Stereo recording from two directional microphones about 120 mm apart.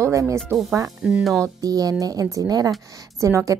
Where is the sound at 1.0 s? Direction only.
5° right (ahead or behind).